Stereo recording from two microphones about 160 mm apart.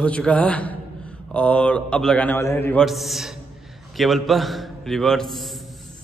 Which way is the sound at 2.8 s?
Centre (ahead or behind).